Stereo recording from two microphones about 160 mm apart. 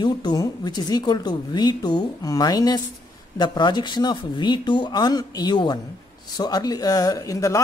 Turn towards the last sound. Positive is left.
turn(degrees=20)  # may be behind; listen again after turning